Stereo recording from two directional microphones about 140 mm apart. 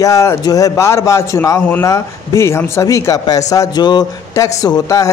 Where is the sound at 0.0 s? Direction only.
20° left (ahead or behind).